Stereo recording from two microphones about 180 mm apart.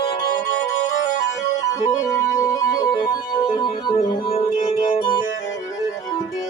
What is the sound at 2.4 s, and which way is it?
Music, 20° left (ahead or behind).